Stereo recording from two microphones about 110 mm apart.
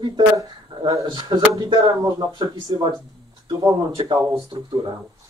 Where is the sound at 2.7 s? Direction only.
45° right (ahead or behind).